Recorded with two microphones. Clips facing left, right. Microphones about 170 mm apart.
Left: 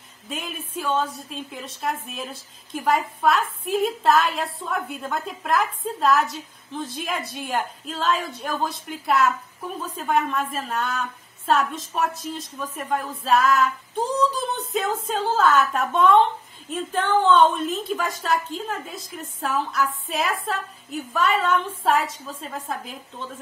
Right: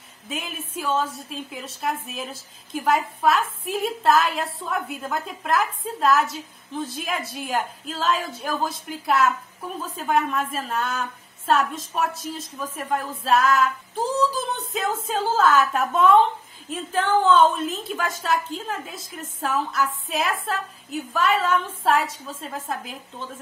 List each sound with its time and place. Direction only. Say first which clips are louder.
0.3 s a woman's voice: even; centre (ahead or behind)